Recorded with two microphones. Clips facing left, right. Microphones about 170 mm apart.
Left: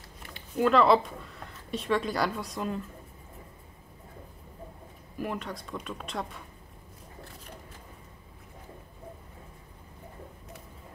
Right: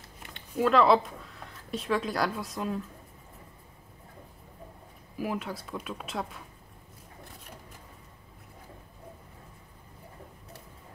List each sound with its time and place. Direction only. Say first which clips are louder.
0.3 s speech: left 1 dB; centre (ahead or behind)
5.1 s speech: right 1 dB; 5° right (ahead or behind)